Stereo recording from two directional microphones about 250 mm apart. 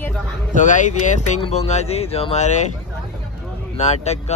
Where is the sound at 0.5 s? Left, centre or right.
Left.